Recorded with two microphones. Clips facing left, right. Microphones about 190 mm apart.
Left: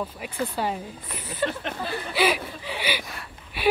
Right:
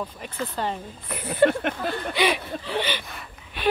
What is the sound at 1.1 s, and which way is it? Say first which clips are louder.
Speech: right 9 dB; 65° right (ahead or behind).